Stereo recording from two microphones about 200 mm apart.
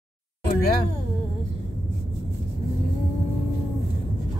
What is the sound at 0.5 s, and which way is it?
Speech, 45° left (ahead or behind).